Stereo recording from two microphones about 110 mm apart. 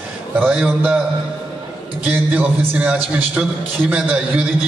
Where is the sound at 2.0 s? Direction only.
15° right (ahead or behind).